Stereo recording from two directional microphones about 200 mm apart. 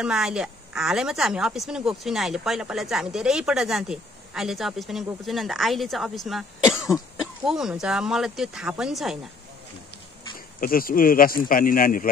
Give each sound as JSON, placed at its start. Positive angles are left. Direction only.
{"t": 0.0, "sound": "a woman's voice", "side_deg": -5}
{"t": 10.6, "sound": "speech", "side_deg": 45}